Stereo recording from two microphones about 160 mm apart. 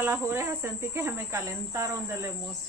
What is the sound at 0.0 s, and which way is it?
Speech, 15° right (ahead or behind).